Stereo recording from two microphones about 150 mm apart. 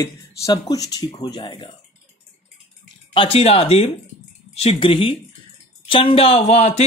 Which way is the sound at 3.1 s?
35° left (ahead or behind).